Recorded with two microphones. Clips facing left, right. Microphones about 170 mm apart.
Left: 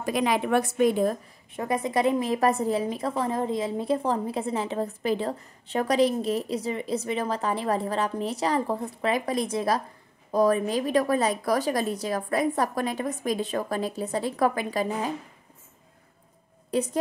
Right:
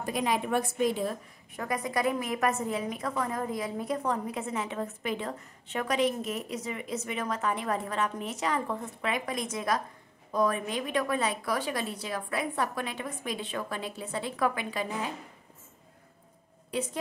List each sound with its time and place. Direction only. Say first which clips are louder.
0.0 s a woman's voice: left 4 dB; 85° left; by 1.1 s 55° left (ahead or behind)
1.5 s a woman's voice: left 5 dB; 25° left (ahead or behind)
16.7 s a woman's voice: left 6 dB; 40° left (ahead or behind)